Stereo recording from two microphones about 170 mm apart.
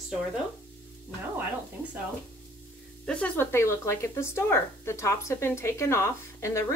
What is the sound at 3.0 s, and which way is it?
Speech, 5° left (ahead or behind).